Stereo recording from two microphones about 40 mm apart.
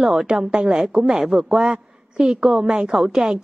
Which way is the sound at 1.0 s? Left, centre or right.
Centre.